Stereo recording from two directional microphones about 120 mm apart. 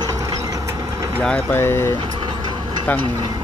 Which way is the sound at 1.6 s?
20° left (ahead or behind).